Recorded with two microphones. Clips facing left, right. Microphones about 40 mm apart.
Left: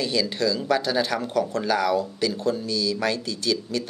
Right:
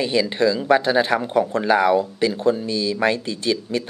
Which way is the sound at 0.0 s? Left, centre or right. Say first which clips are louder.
Right 5 dB; right.